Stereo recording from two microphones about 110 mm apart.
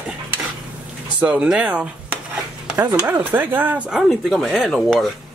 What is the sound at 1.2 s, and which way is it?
Speech, 10° right (ahead or behind).